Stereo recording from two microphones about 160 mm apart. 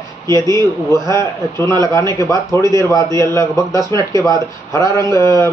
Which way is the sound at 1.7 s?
20° left (ahead or behind).